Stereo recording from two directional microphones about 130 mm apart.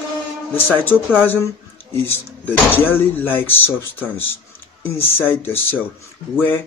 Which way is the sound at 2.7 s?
15° left (ahead or behind).